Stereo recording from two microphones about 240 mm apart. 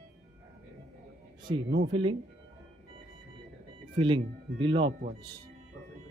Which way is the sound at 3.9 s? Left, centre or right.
Centre.